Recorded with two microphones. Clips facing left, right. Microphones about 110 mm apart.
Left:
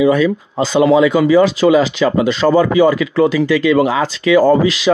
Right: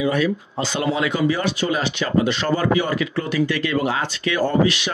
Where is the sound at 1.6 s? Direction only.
90° left.